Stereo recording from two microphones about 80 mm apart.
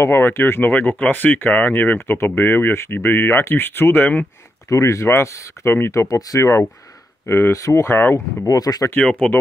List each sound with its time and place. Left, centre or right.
0.0 s speech: left
4.6 s speech: left
7.2 s speech: left
8.5 s speech: left
8.9 s speech: centre